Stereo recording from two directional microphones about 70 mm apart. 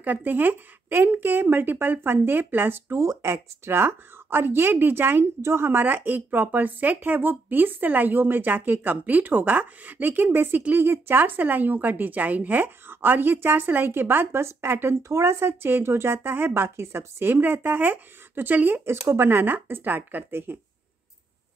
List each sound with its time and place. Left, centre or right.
0.0 s a woman's voice: right
3.0 s a woman's voice: right
18.9 s a woman's voice: right